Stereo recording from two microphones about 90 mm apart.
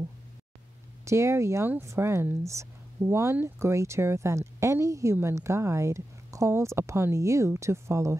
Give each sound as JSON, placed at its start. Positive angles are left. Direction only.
{"t": 1.0, "sound": "speech", "side_deg": -30}